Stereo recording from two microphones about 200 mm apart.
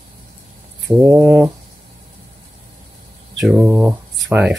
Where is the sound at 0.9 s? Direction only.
10° right (ahead or behind).